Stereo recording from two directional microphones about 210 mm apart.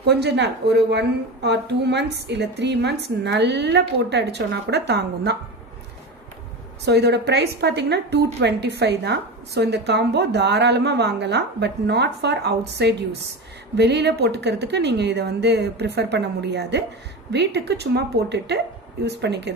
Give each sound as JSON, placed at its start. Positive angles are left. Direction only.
{"t": 0.0, "sound": "a woman's voice", "side_deg": -55}
{"t": 6.8, "sound": "a woman's voice", "side_deg": -55}